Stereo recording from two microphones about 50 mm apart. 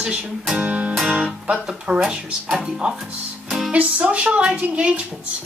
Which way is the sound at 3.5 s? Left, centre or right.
Centre.